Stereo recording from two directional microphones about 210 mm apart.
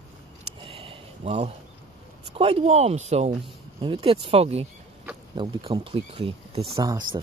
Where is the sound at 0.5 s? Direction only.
25° right (ahead or behind).